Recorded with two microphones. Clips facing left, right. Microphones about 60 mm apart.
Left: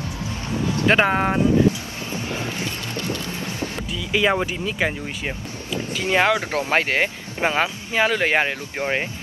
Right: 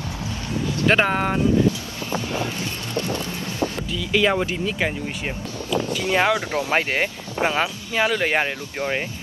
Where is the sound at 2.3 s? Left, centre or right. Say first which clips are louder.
Right 1 dB; left.